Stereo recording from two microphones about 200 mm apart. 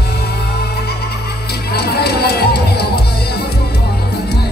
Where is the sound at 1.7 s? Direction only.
55° left (ahead or behind).